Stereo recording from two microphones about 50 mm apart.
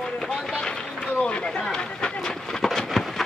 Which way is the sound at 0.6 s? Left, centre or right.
Left.